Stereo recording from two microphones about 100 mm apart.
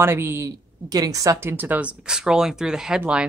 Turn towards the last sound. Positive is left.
turn(degrees=-10)  # may be behind; listen again after turning